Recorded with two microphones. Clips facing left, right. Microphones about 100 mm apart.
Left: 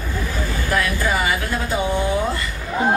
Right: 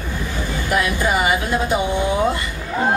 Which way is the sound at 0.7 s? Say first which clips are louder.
Right 2 dB; 20° right (ahead or behind).